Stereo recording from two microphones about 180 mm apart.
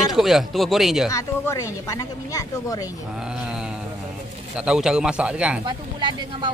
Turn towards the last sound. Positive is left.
turn(degrees=-25)  # may be behind; listen again after turning